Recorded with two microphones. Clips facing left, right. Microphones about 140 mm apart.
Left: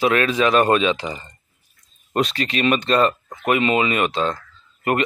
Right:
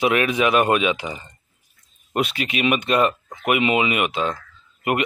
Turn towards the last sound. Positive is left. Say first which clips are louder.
# left 1 dB
turn(degrees=-15)  # may be behind; listen again after turning